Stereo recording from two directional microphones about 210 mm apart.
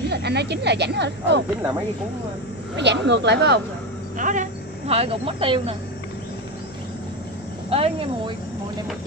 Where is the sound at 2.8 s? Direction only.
55° right (ahead or behind).